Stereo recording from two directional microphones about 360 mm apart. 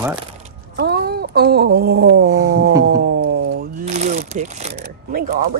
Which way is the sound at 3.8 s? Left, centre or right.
Centre.